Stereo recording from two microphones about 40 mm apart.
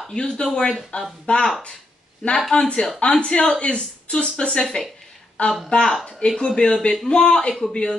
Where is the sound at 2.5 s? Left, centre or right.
Left.